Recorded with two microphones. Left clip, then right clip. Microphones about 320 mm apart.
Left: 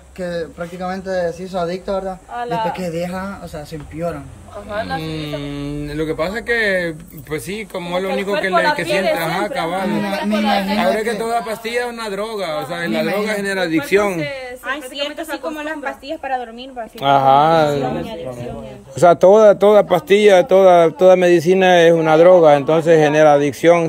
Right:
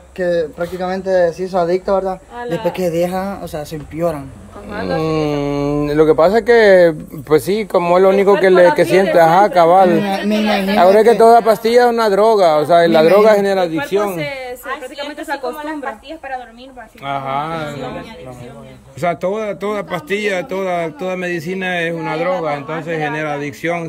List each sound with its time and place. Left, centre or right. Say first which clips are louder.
0.2 s speech: right 7 dB; centre
2.3 s a man's voice: left 1 dB; centre
2.7 s speech: right 6 dB; centre
15.5 s a woman's voice: even; left
18.9 s a man's voice: left 9 dB; centre